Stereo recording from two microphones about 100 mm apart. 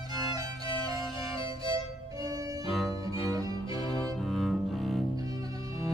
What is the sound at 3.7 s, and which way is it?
Cello, 55° left (ahead or behind).